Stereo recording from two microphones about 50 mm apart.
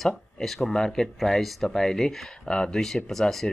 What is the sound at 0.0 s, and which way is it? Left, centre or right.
Speech, centre.